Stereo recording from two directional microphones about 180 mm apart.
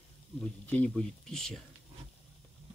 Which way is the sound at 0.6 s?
5° left (ahead or behind).